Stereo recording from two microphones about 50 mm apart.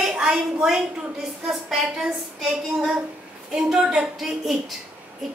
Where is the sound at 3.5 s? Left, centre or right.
Centre.